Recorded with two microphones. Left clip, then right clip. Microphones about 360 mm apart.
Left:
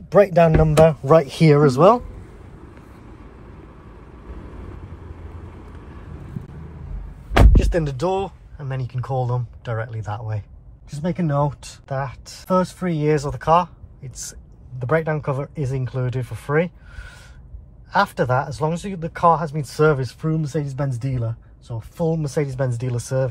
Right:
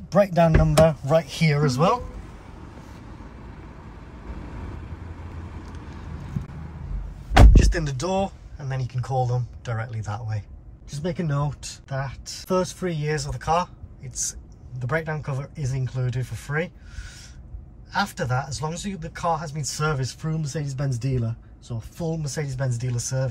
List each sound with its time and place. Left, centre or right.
0.1 s speech: centre
7.5 s speech: centre
10.9 s speech: centre
14.8 s speech: centre